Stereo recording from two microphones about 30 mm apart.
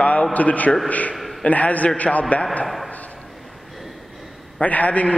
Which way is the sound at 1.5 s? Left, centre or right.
Left.